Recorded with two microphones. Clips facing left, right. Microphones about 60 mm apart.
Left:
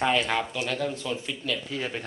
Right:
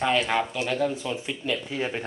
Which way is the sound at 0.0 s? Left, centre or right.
Centre.